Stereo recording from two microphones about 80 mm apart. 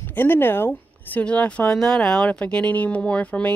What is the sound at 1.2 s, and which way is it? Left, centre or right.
Speech, centre.